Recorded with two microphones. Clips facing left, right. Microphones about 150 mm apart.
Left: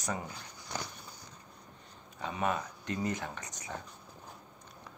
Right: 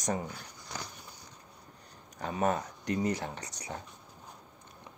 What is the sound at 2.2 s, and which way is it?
Speech, 45° right (ahead or behind).